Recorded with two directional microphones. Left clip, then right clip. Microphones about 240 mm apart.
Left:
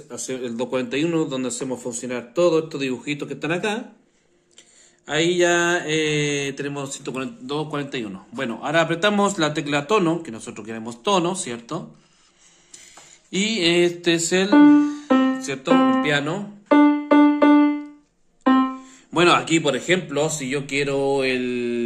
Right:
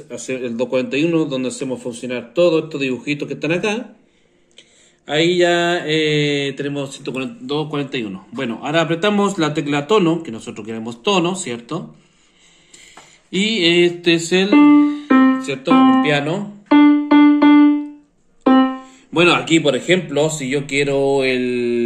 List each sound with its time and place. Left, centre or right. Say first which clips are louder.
0.3 s a man's voice: right 6 dB; centre
5.0 s mantra: right 4 dB; centre
13.3 s mantra: right 4 dB; centre
16.6 s keyboard: right 4 dB; left
19.1 s mantra: right 3 dB; centre